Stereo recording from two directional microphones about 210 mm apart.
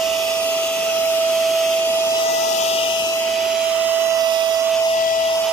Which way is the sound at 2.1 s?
30° left (ahead or behind).